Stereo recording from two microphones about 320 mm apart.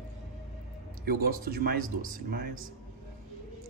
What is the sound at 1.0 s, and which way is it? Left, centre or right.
Speech, right.